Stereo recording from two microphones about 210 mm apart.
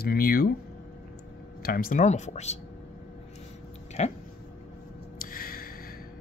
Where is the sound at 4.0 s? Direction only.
30° left (ahead or behind).